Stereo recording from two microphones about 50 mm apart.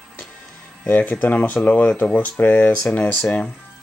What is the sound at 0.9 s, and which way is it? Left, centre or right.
Speech, left.